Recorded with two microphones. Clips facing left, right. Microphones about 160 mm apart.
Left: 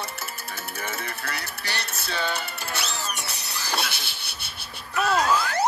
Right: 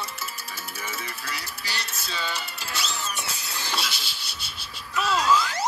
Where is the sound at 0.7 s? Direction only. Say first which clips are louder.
Left 3 dB; 55° left (ahead or behind).